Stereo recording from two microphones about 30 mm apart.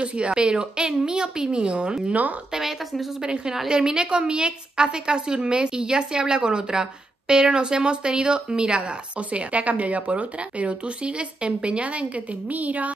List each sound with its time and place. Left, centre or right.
0.0 s a woman's voice: right
3.6 s a woman's voice: right
9.3 s speech: right
11.1 s a woman's voice: right
12.5 s speech: right